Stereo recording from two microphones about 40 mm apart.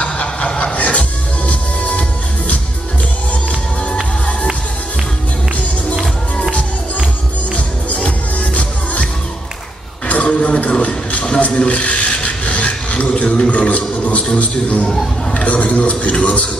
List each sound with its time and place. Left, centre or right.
0.0 s chuckle: left
0.7 s music: left
3.9 s music: left
8.0 s music: left
10.2 s a sound: left